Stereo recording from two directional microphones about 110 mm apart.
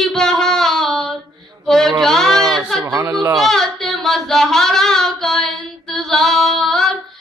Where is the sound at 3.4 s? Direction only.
Centre (ahead or behind).